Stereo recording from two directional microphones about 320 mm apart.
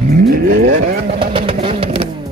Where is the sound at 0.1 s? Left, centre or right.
Right.